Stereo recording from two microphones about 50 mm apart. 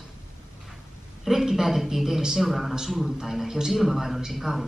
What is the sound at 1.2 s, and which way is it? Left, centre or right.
A man's voice, centre.